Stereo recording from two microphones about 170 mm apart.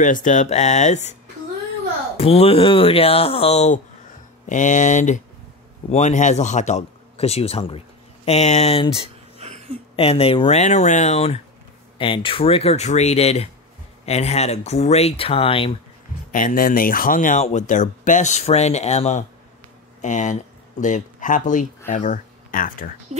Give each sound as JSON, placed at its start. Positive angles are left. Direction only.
{"t": 0.0, "sound": "speech", "side_deg": 45}
{"t": 2.1, "sound": "speech", "side_deg": 35}
{"t": 9.4, "sound": "a sound", "side_deg": -40}
{"t": 9.9, "sound": "speech", "side_deg": 35}
{"t": 16.3, "sound": "speech", "side_deg": 50}